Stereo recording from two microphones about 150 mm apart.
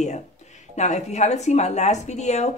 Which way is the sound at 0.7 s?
50° left (ahead or behind).